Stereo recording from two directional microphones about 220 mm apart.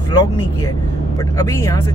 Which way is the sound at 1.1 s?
15° left (ahead or behind).